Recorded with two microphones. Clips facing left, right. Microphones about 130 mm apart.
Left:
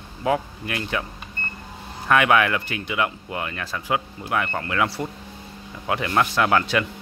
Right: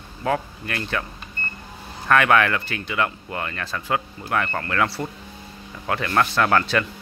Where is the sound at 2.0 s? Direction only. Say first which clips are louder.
Even; 10° left (ahead or behind).